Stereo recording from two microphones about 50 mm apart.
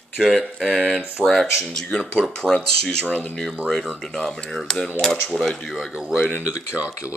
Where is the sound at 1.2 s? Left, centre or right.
Centre.